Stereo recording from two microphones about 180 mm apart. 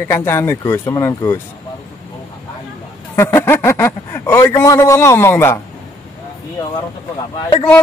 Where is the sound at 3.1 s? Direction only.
15° left (ahead or behind).